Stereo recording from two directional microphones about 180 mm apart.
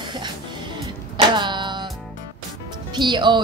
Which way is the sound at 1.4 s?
25° right (ahead or behind).